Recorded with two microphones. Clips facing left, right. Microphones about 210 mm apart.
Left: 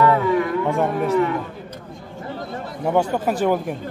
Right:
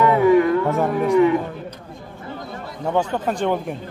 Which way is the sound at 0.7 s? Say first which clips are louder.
Right 1 dB; centre (ahead or behind).